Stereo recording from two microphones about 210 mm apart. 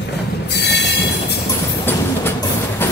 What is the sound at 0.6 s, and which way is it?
Train, 55° left (ahead or behind).